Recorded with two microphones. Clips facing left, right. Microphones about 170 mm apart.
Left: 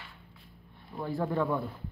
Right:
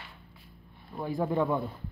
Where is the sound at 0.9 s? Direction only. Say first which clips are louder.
Right 2 dB; 15° right (ahead or behind).